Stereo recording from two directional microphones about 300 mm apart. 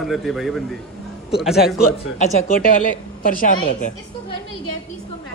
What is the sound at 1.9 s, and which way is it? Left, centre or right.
A woman's voice, left.